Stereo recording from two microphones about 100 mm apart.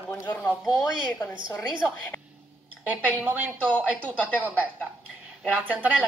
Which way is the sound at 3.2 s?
20° right (ahead or behind).